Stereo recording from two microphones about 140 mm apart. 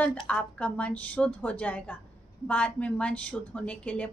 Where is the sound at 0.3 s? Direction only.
10° left (ahead or behind).